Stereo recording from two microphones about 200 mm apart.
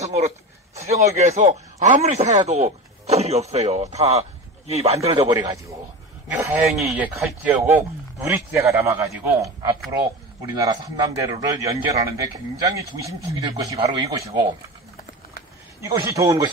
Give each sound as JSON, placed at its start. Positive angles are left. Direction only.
{"t": 0.0, "sound": "a sound", "side_deg": -30}
{"t": 1.2, "sound": "a man's voice", "side_deg": -35}
{"t": 5.3, "sound": "a man's voice", "side_deg": -20}
{"t": 15.8, "sound": "a man's voice", "side_deg": -15}